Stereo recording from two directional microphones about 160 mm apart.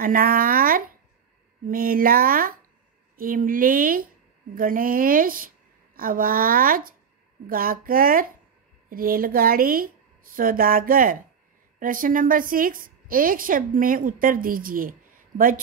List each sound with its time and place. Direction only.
0.0 s a woman's voice: 65° right (ahead or behind)